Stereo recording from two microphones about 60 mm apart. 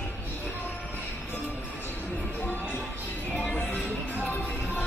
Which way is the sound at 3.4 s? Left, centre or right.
Left.